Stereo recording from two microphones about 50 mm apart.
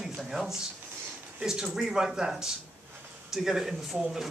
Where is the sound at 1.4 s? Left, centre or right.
Centre.